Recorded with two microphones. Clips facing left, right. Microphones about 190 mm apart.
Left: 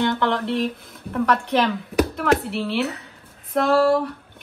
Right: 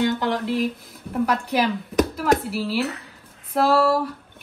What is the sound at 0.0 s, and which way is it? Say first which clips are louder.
Speech: left 1 dB; 60° left (ahead or behind).